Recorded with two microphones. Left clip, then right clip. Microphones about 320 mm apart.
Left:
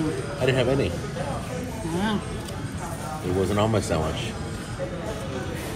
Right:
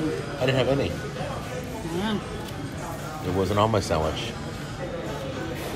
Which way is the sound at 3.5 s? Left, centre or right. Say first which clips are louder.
Right 4 dB; centre.